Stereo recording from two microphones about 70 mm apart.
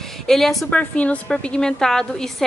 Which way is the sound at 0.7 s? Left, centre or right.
Centre.